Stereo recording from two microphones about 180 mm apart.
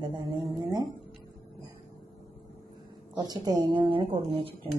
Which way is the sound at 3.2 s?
25° right (ahead or behind).